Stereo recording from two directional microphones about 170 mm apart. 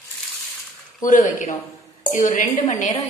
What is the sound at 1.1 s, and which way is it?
A woman's voice, 50° left (ahead or behind).